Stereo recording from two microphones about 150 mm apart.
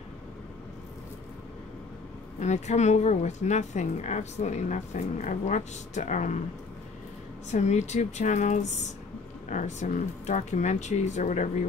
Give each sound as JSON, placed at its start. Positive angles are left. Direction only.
{"t": 2.4, "sound": "a woman's voice", "side_deg": 50}
{"t": 7.5, "sound": "a woman's voice", "side_deg": 50}